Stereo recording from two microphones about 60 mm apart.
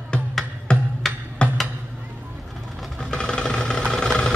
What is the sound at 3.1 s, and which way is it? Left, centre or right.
Vehicle, centre.